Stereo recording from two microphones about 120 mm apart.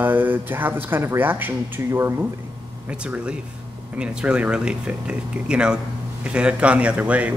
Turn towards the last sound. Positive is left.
turn(degrees=-10)  # may be behind; listen again after turning